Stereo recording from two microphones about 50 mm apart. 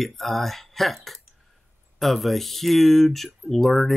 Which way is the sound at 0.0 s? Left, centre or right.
Centre.